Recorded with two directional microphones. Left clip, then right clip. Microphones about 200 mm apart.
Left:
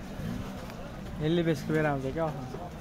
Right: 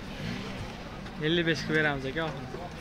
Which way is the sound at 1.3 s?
60° left (ahead or behind).